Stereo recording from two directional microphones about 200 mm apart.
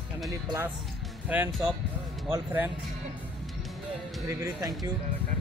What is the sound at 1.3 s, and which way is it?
Speech, 5° right (ahead or behind).